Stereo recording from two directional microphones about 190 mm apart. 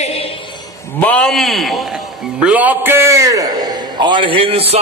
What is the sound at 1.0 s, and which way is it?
A man's voice, 5° left (ahead or behind).